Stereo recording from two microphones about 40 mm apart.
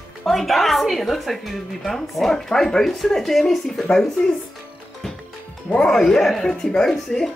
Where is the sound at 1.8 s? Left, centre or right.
Centre.